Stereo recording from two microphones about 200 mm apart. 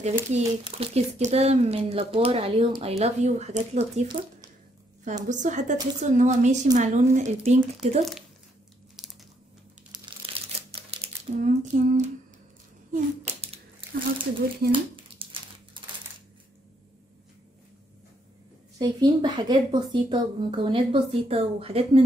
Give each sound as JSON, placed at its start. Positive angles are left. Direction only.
{"t": 0.3, "sound": "speech", "side_deg": -30}
{"t": 5.3, "sound": "speech", "side_deg": -40}
{"t": 9.9, "sound": "crumpling", "side_deg": -25}
{"t": 13.2, "sound": "a sound", "side_deg": -30}
{"t": 18.8, "sound": "speech", "side_deg": -20}